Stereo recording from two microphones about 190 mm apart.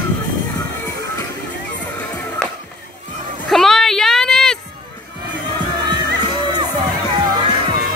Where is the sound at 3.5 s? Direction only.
Centre (ahead or behind).